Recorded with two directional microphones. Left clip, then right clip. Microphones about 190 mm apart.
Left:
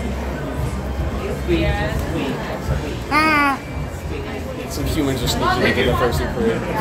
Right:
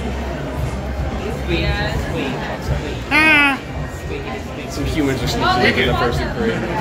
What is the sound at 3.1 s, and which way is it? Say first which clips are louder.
Music: right 3 dB; 25° right (ahead or behind).